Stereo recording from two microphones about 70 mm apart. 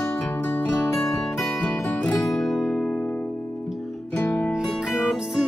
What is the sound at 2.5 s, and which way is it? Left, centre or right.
Music, centre.